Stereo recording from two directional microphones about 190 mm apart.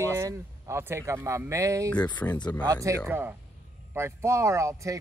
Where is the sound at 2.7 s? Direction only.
15° right (ahead or behind).